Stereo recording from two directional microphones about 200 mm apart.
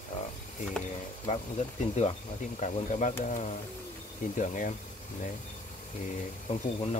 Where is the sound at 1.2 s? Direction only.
35° left (ahead or behind).